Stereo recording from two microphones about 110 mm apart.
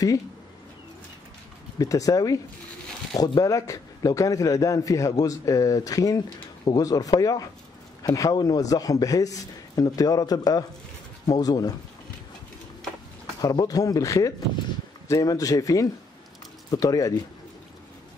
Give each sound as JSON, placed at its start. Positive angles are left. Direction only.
{"t": 1.8, "sound": "a man's voice", "side_deg": 30}
{"t": 13.4, "sound": "a man's voice", "side_deg": 35}